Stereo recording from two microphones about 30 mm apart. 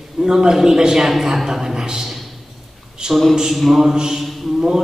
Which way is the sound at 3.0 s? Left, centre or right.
Right.